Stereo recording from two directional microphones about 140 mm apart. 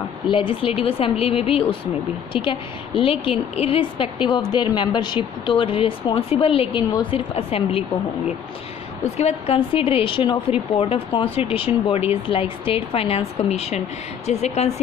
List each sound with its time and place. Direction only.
0.3 s a woman's voice: 40° left (ahead or behind)
9.1 s a woman's voice: 50° left (ahead or behind)